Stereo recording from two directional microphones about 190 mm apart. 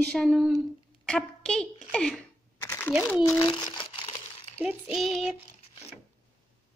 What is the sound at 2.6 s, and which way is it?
Single-lens reflex camera, 15° left (ahead or behind).